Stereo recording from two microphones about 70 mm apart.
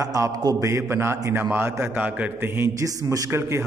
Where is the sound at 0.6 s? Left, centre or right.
Right.